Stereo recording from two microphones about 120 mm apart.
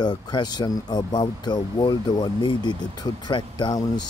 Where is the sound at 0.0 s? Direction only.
35° left (ahead or behind).